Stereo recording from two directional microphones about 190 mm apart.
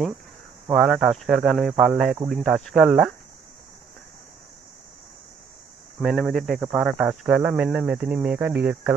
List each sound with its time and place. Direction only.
0.7 s speech: 5° right (ahead or behind)
5.9 s speech: centre (ahead or behind)